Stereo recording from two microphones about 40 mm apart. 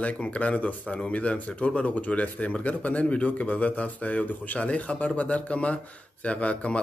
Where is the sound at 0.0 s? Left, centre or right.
Left.